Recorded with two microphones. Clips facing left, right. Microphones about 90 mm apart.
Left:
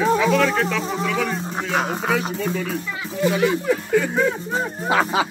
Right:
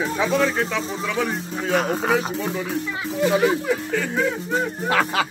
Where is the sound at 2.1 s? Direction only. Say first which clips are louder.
Even; 20° right (ahead or behind).